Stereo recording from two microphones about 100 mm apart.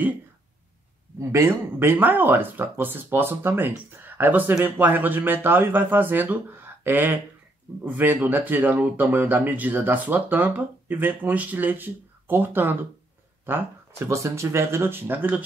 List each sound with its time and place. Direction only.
1.3 s speech: 25° right (ahead or behind)